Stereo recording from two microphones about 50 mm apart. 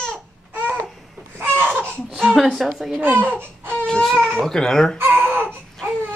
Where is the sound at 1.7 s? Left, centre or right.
Right.